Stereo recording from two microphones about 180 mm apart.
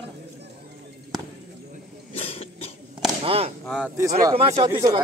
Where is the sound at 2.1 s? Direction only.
35° left (ahead or behind).